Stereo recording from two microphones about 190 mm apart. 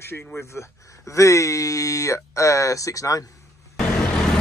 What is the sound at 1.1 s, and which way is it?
Speech, 15° left (ahead or behind).